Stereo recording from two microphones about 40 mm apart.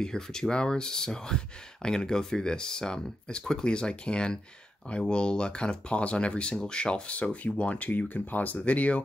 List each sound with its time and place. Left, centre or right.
0.0 s speech: centre
7.5 s speech: left
8.1 s speech: left
8.5 s speech: left